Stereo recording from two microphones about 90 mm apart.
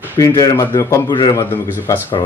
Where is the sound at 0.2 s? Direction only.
40° left (ahead or behind).